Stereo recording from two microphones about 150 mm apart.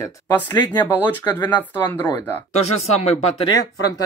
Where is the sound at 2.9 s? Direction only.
45° left (ahead or behind).